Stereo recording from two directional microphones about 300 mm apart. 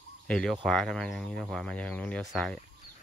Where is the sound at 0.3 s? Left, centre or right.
Centre.